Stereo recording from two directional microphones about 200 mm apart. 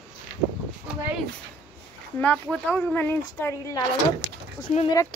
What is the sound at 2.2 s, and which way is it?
Speech, 10° left (ahead or behind).